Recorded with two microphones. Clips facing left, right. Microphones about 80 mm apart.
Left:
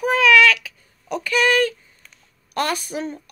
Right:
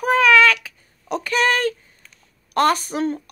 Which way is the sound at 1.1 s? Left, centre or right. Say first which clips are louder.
Left 1 dB; right.